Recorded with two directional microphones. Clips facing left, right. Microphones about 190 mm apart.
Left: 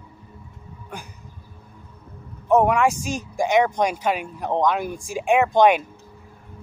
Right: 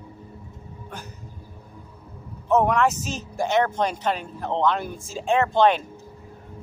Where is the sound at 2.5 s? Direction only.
10° left (ahead or behind).